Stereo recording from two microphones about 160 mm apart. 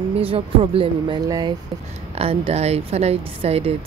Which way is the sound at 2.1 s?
40° right (ahead or behind).